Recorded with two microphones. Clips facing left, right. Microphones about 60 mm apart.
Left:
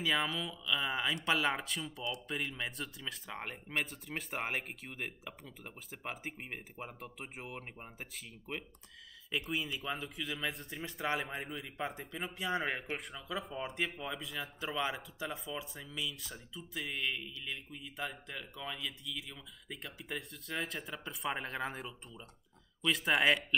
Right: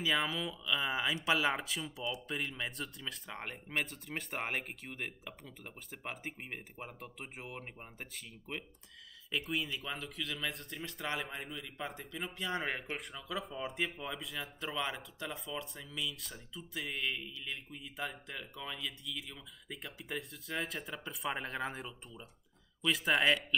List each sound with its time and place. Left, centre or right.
0.0 s a man's voice: centre
11.8 s speech: centre